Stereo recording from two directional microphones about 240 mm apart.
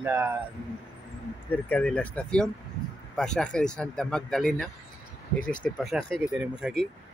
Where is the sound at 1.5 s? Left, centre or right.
Centre.